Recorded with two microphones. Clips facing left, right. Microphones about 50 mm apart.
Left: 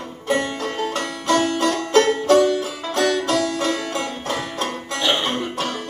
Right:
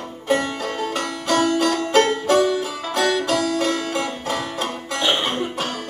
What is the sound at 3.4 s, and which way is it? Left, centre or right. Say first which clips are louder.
Music: right 1 dB; left.